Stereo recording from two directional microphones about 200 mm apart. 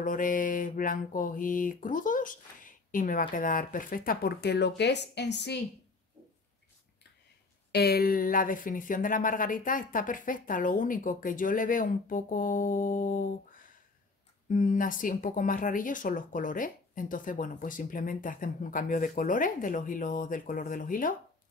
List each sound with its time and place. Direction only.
0.0 s speech: 40° left (ahead or behind); by 5.6 s 60° left (ahead or behind)
7.7 s speech: 50° left (ahead or behind)